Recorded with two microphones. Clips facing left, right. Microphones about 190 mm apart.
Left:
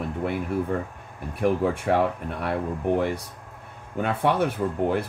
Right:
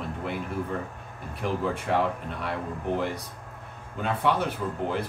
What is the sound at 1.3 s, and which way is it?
Speech, 55° left (ahead or behind).